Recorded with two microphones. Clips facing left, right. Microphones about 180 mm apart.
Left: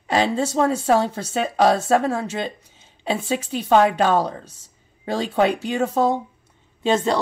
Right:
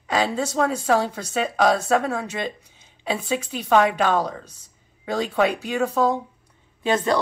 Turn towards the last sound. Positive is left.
turn(degrees=25)  # may be behind; listen again after turning